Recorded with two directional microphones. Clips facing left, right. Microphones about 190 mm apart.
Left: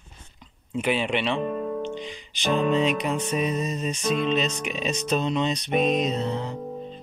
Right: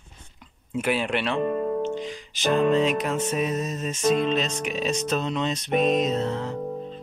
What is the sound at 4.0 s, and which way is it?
Music, 45° right (ahead or behind).